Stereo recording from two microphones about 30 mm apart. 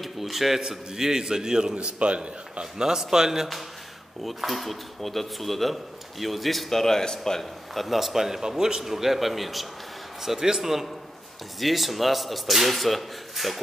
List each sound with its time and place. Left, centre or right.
0.0 s a man's voice: centre
0.6 s a man's voice: centre
1.8 s a man's voice: right
2.6 s a man's voice: right
4.2 s speech: centre
6.7 s speech: centre
7.7 s a man's voice: centre
8.8 s speech: centre
10.2 s a man's voice: centre